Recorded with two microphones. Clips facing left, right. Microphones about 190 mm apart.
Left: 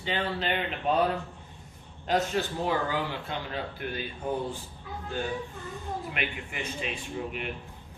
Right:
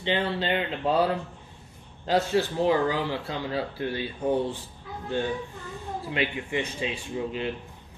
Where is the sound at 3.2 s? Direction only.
35° right (ahead or behind).